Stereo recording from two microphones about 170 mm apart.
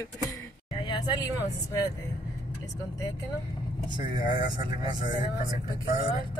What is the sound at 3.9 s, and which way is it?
Speech, 25° right (ahead or behind).